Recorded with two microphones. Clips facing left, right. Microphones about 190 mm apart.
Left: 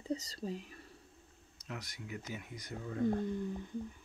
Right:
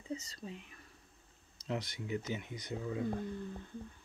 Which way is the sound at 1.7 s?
25° right (ahead or behind).